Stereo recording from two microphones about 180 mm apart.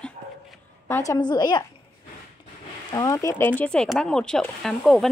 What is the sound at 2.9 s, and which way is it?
A woman's voice, 15° left (ahead or behind).